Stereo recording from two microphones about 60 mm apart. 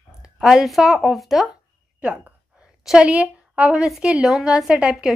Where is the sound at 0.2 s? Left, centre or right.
Centre.